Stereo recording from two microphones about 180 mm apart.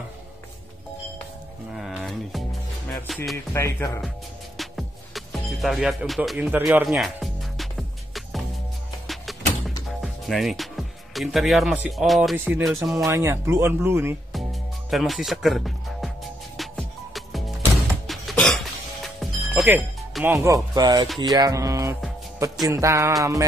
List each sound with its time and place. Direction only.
1.7 s a sound: centre (ahead or behind)
2.9 s music: centre (ahead or behind)
3.5 s speech: 15° left (ahead or behind)
4.6 s music: centre (ahead or behind)
9.0 s music: centre (ahead or behind)
9.8 s speech: centre (ahead or behind)
12.4 s music: 10° right (ahead or behind)
12.9 s speech: 15° right (ahead or behind)
14.3 s music: centre (ahead or behind)
20.2 s speech: 15° right (ahead or behind)